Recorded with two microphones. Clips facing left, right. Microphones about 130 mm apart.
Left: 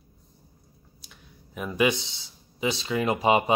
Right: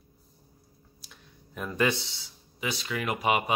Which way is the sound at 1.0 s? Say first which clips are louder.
Left 2 dB; centre (ahead or behind).